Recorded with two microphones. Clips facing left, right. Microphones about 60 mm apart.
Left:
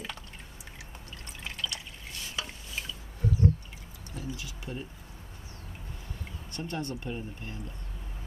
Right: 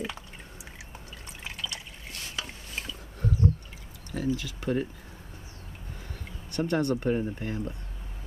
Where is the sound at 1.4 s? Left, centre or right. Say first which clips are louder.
Even; centre.